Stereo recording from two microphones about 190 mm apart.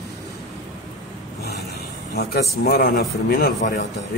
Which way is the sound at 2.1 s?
55° left (ahead or behind).